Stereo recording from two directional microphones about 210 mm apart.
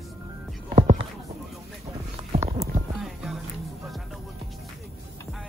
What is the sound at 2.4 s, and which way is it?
Music, 15° right (ahead or behind).